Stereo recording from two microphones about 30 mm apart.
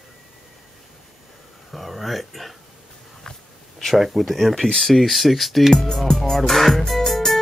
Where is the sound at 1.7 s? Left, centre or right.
Centre.